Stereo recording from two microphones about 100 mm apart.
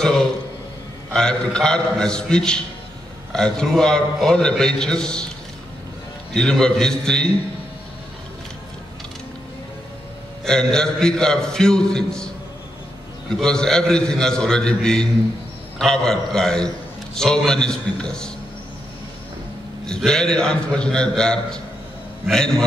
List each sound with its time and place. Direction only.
1.1 s a man's voice: 10° left (ahead or behind)
6.3 s a man's voice: 5° left (ahead or behind)
10.4 s a man's voice: 5° left (ahead or behind)
13.3 s a man's voice: 5° left (ahead or behind)
20.0 s a man's voice: 5° left (ahead or behind)